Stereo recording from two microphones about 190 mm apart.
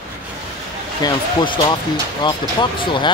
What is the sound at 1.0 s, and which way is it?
Speech, 25° left (ahead or behind).